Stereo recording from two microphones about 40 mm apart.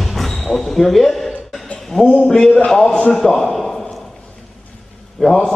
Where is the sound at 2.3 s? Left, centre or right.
Centre.